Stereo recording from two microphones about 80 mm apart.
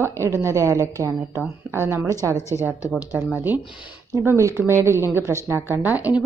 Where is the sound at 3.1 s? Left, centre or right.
Right.